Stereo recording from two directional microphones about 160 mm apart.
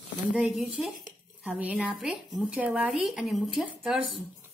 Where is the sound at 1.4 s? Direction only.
5° right (ahead or behind).